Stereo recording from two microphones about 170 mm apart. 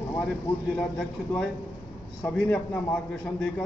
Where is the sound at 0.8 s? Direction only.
5° left (ahead or behind).